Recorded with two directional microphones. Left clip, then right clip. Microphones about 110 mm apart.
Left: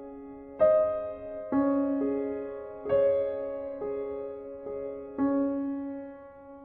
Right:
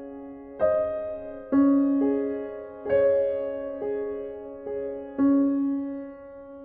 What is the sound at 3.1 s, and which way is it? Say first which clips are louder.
Music: right 5 dB; 35° left (ahead or behind).